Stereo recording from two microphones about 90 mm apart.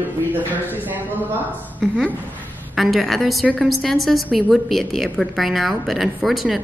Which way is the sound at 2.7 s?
5° right (ahead or behind).